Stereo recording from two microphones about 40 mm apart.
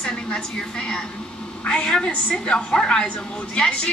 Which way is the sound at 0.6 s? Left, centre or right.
Left.